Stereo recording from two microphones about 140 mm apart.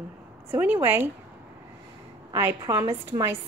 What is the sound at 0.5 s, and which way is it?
Speech, 15° right (ahead or behind).